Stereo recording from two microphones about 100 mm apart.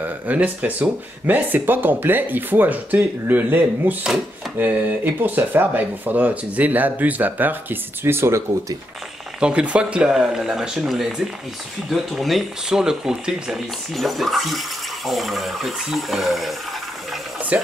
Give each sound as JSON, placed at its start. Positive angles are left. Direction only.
{"t": 0.0, "sound": "speech", "side_deg": -15}
{"t": 9.4, "sound": "speech", "side_deg": -10}